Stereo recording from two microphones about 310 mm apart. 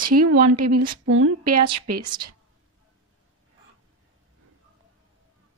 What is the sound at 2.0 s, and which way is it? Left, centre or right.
Speech, centre.